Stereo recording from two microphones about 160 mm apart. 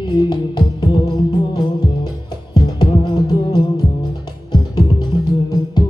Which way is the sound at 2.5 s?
25° left (ahead or behind).